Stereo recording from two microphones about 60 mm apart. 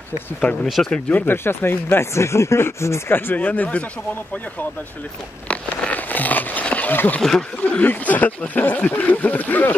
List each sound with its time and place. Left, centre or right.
0.4 s speech: left
1.1 s speech: left
5.5 s a sound: left
6.6 s wild animals: left
7.2 s speech: centre
7.8 s speech: left